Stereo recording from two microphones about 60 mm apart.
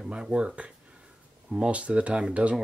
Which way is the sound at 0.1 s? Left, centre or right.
Centre.